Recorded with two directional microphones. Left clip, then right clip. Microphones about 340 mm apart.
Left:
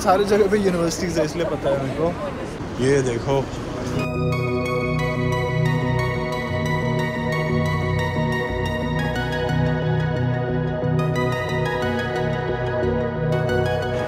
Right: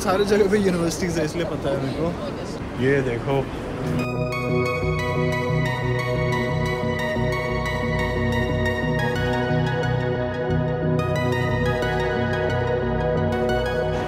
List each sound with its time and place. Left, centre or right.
0.0 s a man's voice: centre